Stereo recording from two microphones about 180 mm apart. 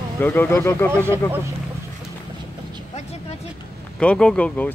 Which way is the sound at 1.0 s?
15° right (ahead or behind).